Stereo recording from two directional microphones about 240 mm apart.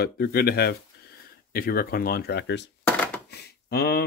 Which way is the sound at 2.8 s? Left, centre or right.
Centre.